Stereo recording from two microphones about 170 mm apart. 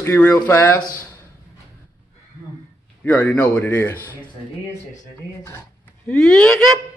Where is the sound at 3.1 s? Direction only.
10° left (ahead or behind).